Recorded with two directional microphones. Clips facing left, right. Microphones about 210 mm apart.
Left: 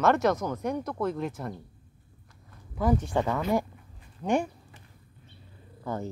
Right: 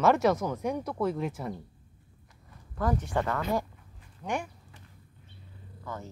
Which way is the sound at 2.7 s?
10° left (ahead or behind).